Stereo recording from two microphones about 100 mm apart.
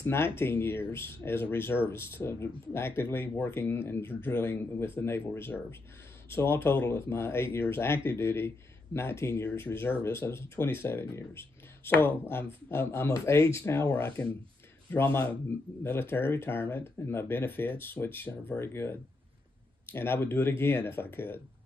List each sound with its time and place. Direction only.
0.0 s speech: 25° left (ahead or behind)